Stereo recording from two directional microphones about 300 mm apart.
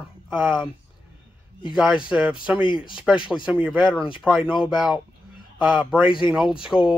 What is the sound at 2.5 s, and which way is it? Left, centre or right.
Speech, centre.